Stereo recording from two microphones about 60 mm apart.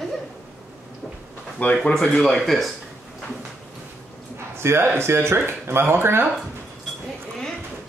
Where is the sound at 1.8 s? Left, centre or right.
Centre.